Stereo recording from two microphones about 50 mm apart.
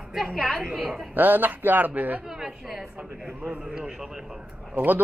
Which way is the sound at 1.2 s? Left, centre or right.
Right.